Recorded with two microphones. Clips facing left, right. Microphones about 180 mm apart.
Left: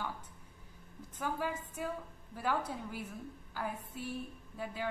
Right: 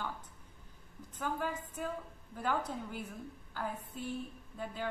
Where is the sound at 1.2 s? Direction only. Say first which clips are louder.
Even; 10° left (ahead or behind).